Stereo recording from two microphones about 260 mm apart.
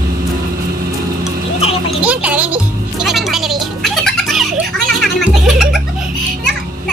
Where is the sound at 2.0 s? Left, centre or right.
Centre.